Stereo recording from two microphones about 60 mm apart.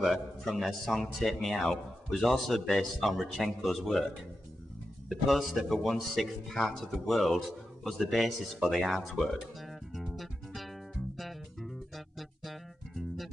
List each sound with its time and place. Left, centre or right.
0.0 s a man's voice: centre
5.1 s a man's voice: centre
9.9 s music: centre
12.2 s music: centre